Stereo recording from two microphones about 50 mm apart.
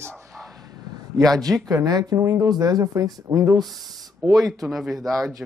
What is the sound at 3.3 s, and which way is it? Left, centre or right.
Speech, right.